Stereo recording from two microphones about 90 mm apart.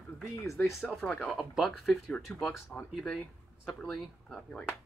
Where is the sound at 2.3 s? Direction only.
20° left (ahead or behind).